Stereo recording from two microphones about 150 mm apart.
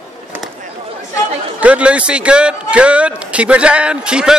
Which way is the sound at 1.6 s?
10° right (ahead or behind).